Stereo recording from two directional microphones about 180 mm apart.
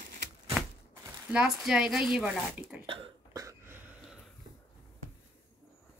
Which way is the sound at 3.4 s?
15° right (ahead or behind).